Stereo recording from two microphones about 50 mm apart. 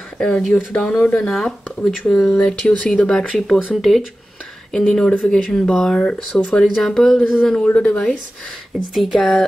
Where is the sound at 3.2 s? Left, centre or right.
Centre.